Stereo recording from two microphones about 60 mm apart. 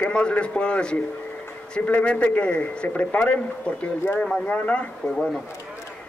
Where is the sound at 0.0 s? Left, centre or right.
Centre.